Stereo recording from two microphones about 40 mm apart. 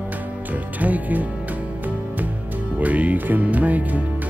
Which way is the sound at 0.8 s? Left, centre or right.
Right.